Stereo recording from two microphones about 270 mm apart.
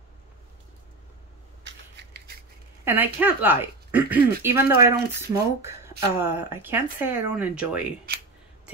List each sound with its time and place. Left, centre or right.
1.6 s scissors: right
2.8 s speech: centre